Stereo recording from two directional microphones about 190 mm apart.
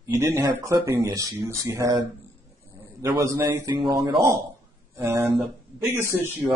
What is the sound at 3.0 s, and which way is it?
Speech, 15° right (ahead or behind).